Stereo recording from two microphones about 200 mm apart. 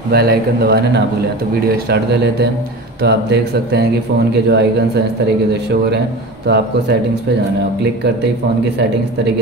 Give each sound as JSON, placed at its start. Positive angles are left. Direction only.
{"t": 0.1, "sound": "a man's voice", "side_deg": -55}
{"t": 6.4, "sound": "a man's voice", "side_deg": -55}